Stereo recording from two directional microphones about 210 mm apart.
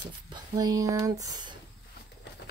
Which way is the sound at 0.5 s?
15° right (ahead or behind).